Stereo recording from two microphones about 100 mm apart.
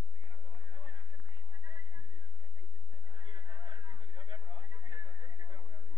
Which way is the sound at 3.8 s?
50° right (ahead or behind).